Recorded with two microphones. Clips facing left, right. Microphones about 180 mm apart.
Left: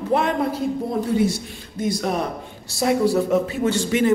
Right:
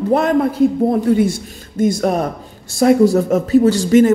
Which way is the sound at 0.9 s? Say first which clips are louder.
Right 6 dB; 50° right (ahead or behind).